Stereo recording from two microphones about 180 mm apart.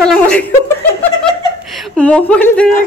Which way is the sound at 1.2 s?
5° left (ahead or behind).